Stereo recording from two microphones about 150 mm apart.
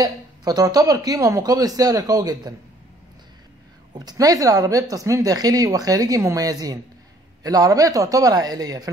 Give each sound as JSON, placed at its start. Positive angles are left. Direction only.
{"t": 0.0, "sound": "speech", "side_deg": -25}
{"t": 3.9, "sound": "speech", "side_deg": -25}